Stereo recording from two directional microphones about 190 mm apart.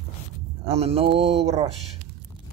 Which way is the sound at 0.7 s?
30° right (ahead or behind).